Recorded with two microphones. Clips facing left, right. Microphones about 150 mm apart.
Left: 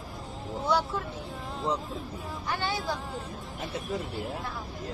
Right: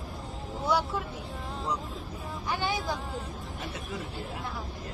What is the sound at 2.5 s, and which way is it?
Speech, 15° right (ahead or behind).